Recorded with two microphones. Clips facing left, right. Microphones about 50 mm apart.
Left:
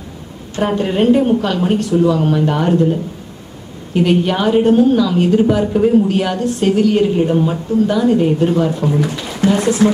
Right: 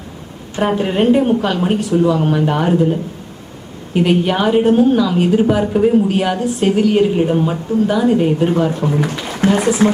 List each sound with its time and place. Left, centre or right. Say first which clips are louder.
0.6 s speech: even; centre